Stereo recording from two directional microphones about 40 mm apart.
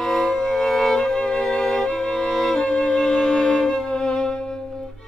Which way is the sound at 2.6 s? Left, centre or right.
Left.